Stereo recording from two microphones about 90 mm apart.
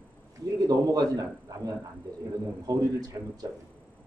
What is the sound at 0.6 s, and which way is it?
Speech, 45° right (ahead or behind).